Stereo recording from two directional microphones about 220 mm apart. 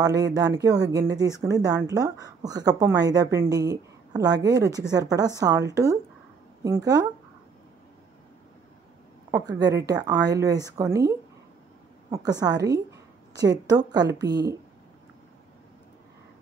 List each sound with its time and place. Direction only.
0.0 s speech: 15° right (ahead or behind)
9.3 s a woman's voice: 15° right (ahead or behind)